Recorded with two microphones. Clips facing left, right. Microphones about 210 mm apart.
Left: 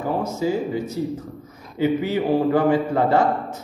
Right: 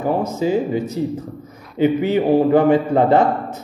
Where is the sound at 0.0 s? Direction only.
20° right (ahead or behind).